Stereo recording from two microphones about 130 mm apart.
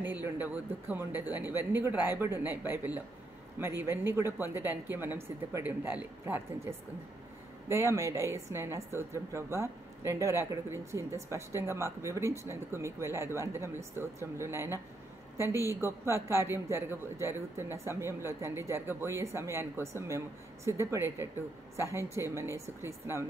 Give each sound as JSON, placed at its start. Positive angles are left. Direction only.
{"t": 0.0, "sound": "a woman's voice", "side_deg": -15}